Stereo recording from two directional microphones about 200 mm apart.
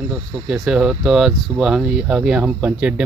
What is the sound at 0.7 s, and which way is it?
Speech, 5° right (ahead or behind).